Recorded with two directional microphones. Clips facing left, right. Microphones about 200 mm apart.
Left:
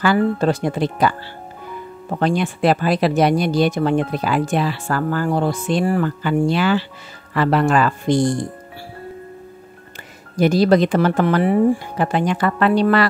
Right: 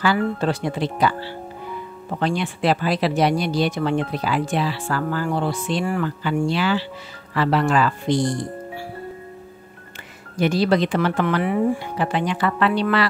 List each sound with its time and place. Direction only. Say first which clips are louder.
0.0 s speech: left 4 dB; 45° left (ahead or behind)
10.3 s speech: left 4 dB; 40° left (ahead or behind)